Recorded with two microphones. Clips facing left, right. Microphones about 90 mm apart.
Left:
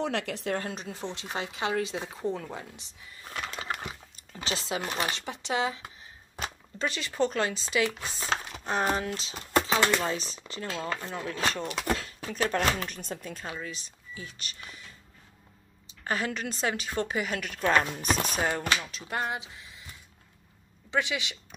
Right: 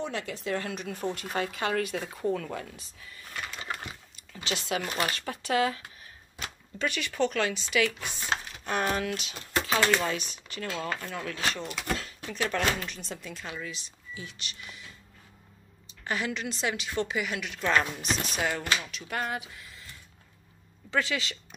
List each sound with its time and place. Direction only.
0.0 s speech: 70° left (ahead or behind)
0.5 s speech: 35° left (ahead or behind)
4.3 s speech: 35° left (ahead or behind)
6.8 s speech: 30° left (ahead or behind)
11.5 s speech: 45° left (ahead or behind)
16.0 s speech: 35° left (ahead or behind)
18.9 s speech: 30° left (ahead or behind)
20.9 s speech: 15° left (ahead or behind)